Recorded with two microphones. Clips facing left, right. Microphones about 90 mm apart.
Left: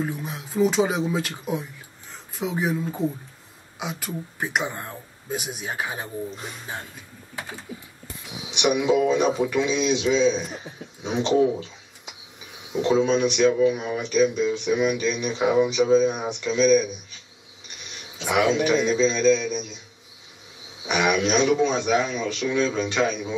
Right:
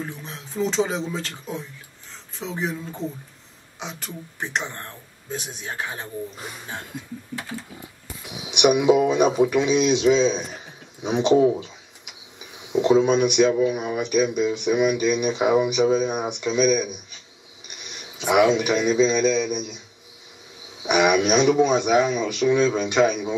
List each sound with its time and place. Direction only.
0.0 s speech: 10° left (ahead or behind)
8.5 s speech: 15° right (ahead or behind)
12.8 s speech: 15° right (ahead or behind)
18.1 s speech: 15° right (ahead or behind)
20.8 s speech: 15° right (ahead or behind)